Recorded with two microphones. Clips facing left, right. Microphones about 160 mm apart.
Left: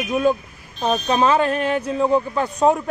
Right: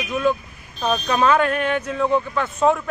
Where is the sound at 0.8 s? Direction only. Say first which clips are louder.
Left 1 dB; 30° left (ahead or behind).